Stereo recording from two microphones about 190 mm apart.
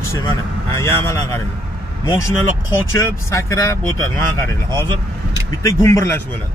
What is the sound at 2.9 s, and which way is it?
A man's voice, 15° left (ahead or behind).